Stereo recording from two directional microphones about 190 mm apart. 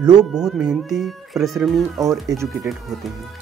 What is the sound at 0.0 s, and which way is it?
Speech, 5° right (ahead or behind).